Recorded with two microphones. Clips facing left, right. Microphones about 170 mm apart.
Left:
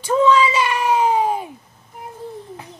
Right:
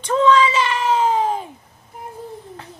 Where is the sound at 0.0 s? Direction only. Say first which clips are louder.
Even; 10° left (ahead or behind).